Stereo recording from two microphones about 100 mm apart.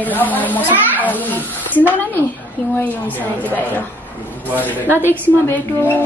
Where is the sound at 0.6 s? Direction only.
20° right (ahead or behind).